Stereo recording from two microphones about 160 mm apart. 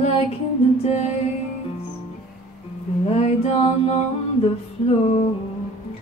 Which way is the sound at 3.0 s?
40° left (ahead or behind).